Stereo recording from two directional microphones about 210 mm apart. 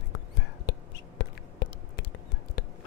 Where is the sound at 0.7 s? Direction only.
55° left (ahead or behind).